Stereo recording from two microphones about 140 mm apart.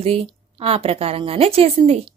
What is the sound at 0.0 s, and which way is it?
A woman's voice, 45° right (ahead or behind).